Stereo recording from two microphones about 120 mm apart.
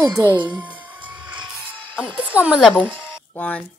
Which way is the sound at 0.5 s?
40° right (ahead or behind).